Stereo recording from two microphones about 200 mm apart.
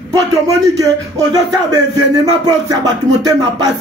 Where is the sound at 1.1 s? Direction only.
20° right (ahead or behind).